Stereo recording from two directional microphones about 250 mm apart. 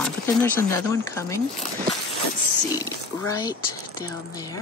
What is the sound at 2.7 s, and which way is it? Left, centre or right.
Speech, centre.